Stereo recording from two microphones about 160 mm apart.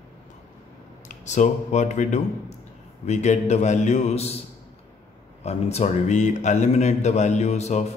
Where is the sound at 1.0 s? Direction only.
50° left (ahead or behind).